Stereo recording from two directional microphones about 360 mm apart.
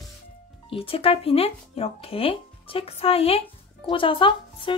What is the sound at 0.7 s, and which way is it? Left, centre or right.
Speech, centre.